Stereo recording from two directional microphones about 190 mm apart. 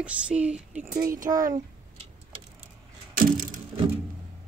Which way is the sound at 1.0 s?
45° right (ahead or behind).